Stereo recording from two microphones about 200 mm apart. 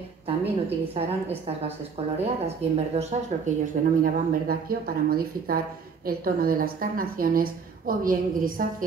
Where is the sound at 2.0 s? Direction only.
30° right (ahead or behind).